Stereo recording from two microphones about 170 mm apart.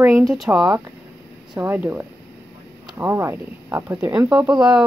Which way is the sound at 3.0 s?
15° right (ahead or behind).